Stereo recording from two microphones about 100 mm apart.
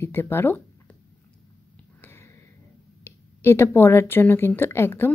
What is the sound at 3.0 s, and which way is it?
Speech, 25° left (ahead or behind).